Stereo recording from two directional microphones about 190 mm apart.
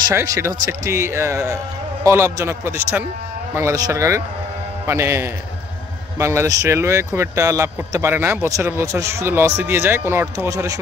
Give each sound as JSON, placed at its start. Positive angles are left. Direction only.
{"t": 0.1, "sound": "speech", "side_deg": -15}